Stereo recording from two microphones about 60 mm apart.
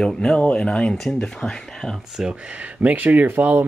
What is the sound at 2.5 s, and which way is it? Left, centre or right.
Speech, right.